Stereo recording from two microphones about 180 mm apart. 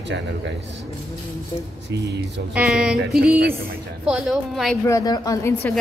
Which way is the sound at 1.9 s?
70° right (ahead or behind).